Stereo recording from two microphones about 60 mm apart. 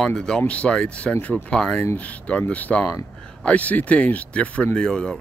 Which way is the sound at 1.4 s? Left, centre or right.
Centre.